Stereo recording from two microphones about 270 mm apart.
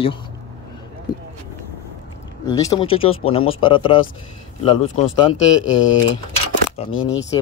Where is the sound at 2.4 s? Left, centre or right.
Centre.